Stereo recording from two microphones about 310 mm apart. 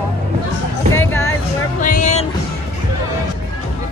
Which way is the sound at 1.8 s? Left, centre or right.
Left.